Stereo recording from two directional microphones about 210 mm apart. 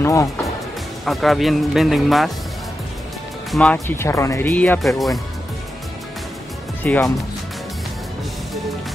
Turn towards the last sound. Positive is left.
turn(degrees=5)  # may be behind; listen again after turning